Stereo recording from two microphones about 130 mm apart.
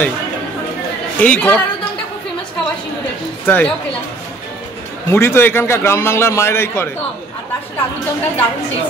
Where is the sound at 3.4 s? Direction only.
15° left (ahead or behind).